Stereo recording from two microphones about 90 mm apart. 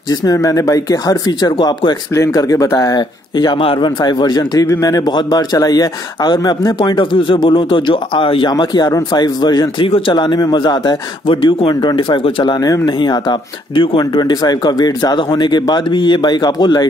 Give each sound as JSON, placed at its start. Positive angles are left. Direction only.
{"t": 0.1, "sound": "speech", "side_deg": 45}
{"t": 2.1, "sound": "speech", "side_deg": 35}
{"t": 3.0, "sound": "speech", "side_deg": 50}
{"t": 3.5, "sound": "speech", "side_deg": 70}
{"t": 6.8, "sound": "speech", "side_deg": 65}
{"t": 8.5, "sound": "speech", "side_deg": 50}
{"t": 9.8, "sound": "speech", "side_deg": 90}
{"t": 10.1, "sound": "a man's voice", "side_deg": 55}
{"t": 11.9, "sound": "speech", "side_deg": 80}
{"t": 12.5, "sound": "speech", "side_deg": 45}